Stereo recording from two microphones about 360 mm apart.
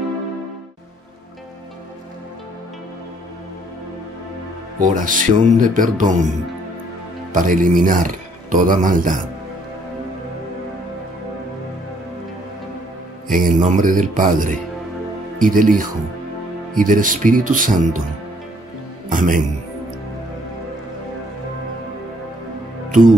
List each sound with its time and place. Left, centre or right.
4.7 s speech: right
7.3 s speech: right
13.3 s speech: right
16.7 s speech: right
19.0 s speech: right
22.8 s speech: right